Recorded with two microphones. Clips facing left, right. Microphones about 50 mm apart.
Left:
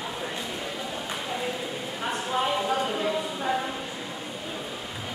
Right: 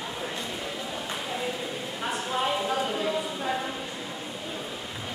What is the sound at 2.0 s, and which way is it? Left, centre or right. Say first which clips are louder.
Clip-clop: left 1 dB; centre.